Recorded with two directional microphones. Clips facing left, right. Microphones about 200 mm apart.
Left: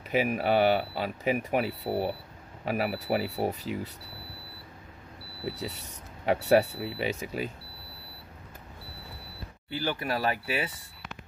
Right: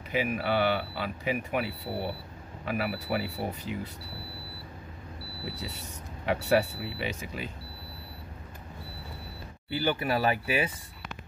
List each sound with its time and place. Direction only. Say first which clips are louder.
0.1 s speech: left 3 dB; 40° left (ahead or behind)
6.2 s speech: left 3 dB; 40° left (ahead or behind)
9.7 s speech: right 3 dB; 5° right (ahead or behind)